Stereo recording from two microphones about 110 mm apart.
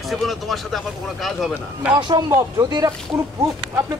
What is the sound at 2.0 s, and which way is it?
Speech, 40° right (ahead or behind).